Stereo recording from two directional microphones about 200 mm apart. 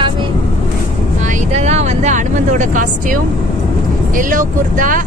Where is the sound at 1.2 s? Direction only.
35° right (ahead or behind).